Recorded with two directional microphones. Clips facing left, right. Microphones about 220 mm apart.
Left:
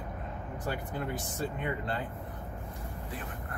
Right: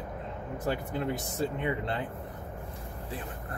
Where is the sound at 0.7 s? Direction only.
25° right (ahead or behind).